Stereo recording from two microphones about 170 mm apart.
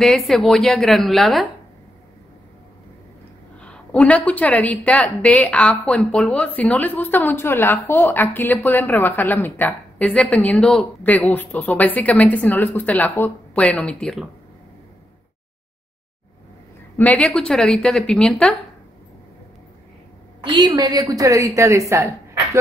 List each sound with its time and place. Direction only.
0.0 s speech: centre (ahead or behind)
3.6 s a woman's voice: 5° left (ahead or behind)
16.9 s speech: 10° left (ahead or behind)
20.4 s a woman's voice: 25° right (ahead or behind)